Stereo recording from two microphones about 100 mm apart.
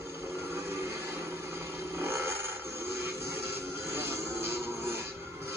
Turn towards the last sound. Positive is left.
turn(degrees=-25)  # may be behind; listen again after turning